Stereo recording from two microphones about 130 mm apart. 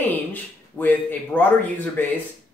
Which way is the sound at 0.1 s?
15° left (ahead or behind).